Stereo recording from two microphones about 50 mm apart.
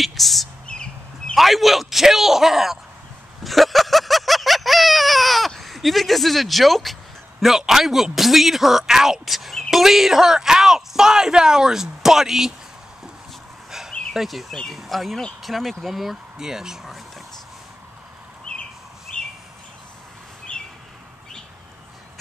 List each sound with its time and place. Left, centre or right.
0.0 s speech: centre
0.7 s bird: centre
1.3 s speech: centre
3.4 s a sound: centre
5.6 s speech: centre
13.7 s dog: centre
14.7 s speech: centre
19.1 s bird: left
20.5 s a sound: left